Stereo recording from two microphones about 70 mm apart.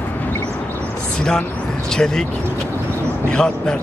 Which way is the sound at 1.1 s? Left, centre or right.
Centre.